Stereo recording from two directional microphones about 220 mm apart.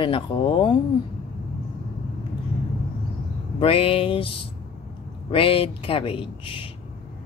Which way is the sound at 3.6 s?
25° left (ahead or behind).